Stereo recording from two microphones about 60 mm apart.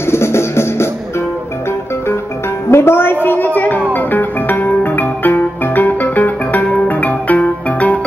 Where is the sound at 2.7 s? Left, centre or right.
Left.